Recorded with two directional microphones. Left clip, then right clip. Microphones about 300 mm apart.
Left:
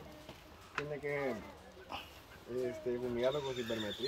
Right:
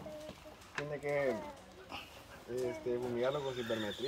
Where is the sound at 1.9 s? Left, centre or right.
Centre.